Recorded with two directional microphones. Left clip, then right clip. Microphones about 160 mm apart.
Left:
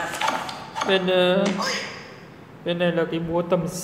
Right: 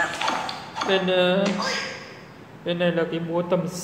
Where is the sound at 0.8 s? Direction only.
10° left (ahead or behind).